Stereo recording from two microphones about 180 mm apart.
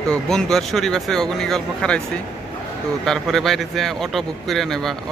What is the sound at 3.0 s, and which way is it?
Speech, 5° left (ahead or behind).